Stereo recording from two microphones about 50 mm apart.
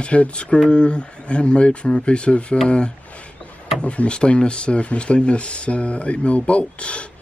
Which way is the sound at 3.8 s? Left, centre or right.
Left.